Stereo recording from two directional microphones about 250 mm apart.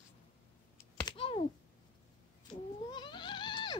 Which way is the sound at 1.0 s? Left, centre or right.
Left.